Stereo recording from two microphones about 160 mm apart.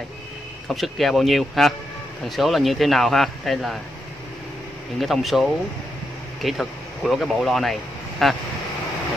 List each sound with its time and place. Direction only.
0.7 s speech: centre (ahead or behind)
5.0 s speech: centre (ahead or behind)